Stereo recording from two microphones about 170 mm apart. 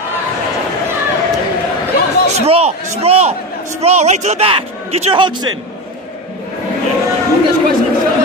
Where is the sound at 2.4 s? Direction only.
35° right (ahead or behind).